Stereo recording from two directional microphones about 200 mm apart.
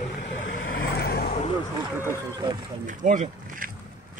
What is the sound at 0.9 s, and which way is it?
Vehicle, 50° left (ahead or behind).